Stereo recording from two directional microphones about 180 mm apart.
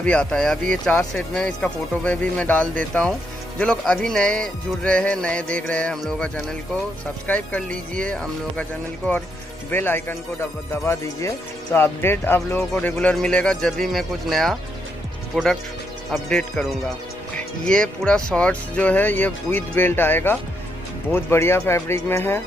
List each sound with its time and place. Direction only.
0.0 s speech: 5° left (ahead or behind)
7.6 s speech: 50° right (ahead or behind)
8.0 s speech: 5° left (ahead or behind)